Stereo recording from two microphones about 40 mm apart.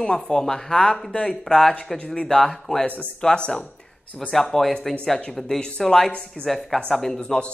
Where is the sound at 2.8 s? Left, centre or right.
Left.